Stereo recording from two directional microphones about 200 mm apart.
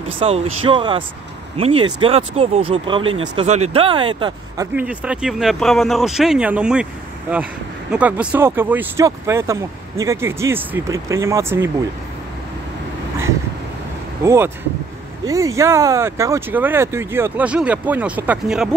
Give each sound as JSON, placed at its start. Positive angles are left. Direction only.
{"t": 0.2, "sound": "speech", "side_deg": -30}
{"t": 4.7, "sound": "speech", "side_deg": -5}
{"t": 14.2, "sound": "speech", "side_deg": -15}